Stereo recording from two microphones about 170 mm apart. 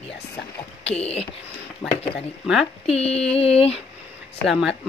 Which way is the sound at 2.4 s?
5° right (ahead or behind).